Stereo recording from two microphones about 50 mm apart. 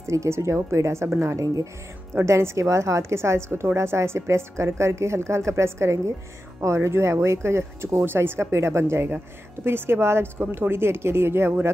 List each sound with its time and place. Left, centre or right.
0.0 s a woman's voice: right
2.2 s a woman's voice: right